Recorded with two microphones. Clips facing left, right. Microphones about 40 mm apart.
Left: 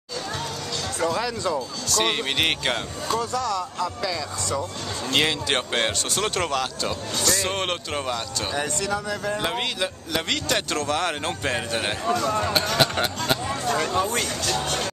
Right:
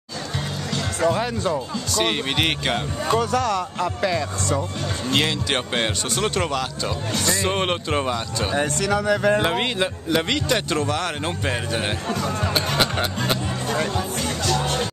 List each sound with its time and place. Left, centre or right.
0.9 s speech: right
1.9 s speech: centre
3.2 s speech: right
3.5 s speech: right
5.0 s speech: centre
7.2 s speech: centre
8.7 s speech: right
9.4 s speech: centre
10.3 s speech: centre
10.9 s speech: centre
13.7 s speech: centre